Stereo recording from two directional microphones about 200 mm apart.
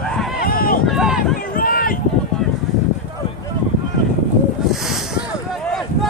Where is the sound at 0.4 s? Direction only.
45° left (ahead or behind).